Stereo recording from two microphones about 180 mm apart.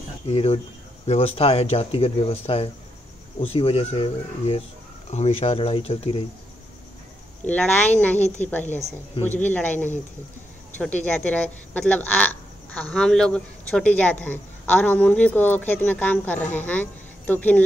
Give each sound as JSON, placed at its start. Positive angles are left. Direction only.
{"t": 0.3, "sound": "speech", "side_deg": 35}
{"t": 7.4, "sound": "speech", "side_deg": 10}
{"t": 11.1, "sound": "a woman's voice", "side_deg": 5}